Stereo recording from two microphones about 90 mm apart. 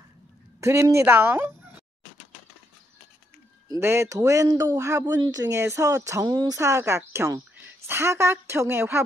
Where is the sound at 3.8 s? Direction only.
30° right (ahead or behind).